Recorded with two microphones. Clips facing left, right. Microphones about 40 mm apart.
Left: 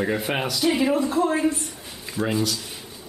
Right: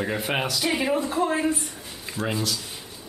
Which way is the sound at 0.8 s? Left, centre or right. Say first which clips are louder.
Left 2 dB; centre.